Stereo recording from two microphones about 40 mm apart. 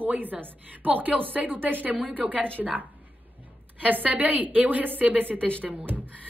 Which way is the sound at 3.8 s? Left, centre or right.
Right.